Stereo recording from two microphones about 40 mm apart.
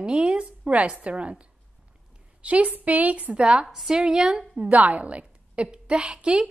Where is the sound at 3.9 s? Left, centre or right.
Right.